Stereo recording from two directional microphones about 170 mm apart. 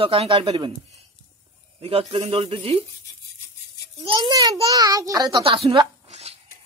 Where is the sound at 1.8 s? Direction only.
35° right (ahead or behind).